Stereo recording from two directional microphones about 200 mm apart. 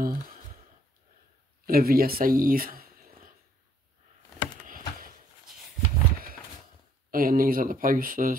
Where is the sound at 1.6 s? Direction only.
45° right (ahead or behind).